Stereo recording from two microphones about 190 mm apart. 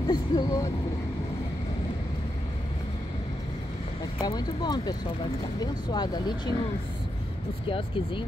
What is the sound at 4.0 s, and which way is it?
Speech, 20° left (ahead or behind).